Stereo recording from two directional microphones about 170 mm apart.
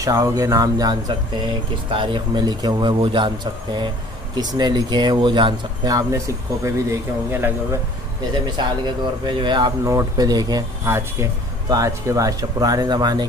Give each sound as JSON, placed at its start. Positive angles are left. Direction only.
{"t": 0.0, "sound": "speech", "side_deg": -20}
{"t": 4.4, "sound": "speech", "side_deg": -25}
{"t": 9.2, "sound": "speech", "side_deg": -25}